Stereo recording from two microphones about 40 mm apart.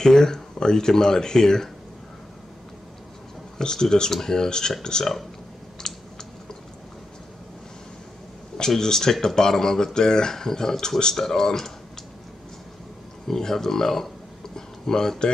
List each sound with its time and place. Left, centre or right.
0.0 s speech: centre
3.5 s speech: centre
5.8 s computer keyboard: centre
8.5 s speech: centre
13.3 s speech: centre